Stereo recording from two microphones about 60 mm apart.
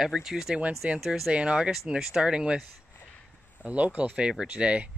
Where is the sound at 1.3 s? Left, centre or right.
Centre.